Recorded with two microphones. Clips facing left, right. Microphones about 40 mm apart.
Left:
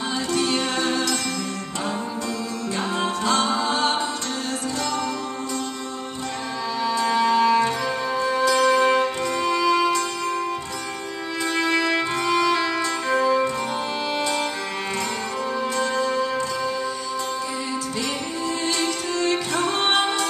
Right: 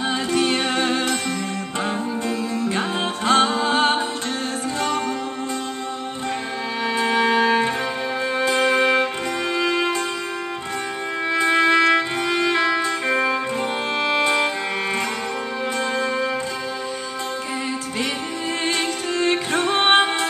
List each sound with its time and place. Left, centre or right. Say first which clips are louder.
0.3 s music: right 2 dB; right
2.2 s music: right 4 dB; right
7.0 s music: right 1 dB; right
11.3 s music: right 6 dB; right
15.8 s music: even; right
18.7 s music: right 1 dB; right